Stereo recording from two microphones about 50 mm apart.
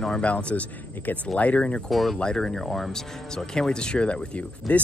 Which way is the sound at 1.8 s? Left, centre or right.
Centre.